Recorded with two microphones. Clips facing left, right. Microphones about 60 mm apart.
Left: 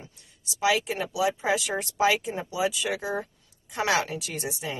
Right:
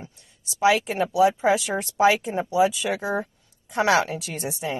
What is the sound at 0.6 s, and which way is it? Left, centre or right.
Speech, right.